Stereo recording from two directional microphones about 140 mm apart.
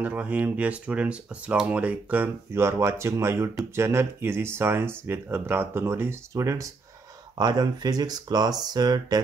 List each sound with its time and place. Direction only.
0.0 s speech: 10° right (ahead or behind); by 9.2 s 30° right (ahead or behind)